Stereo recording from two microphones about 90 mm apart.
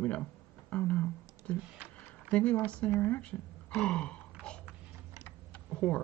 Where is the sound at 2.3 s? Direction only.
15° left (ahead or behind).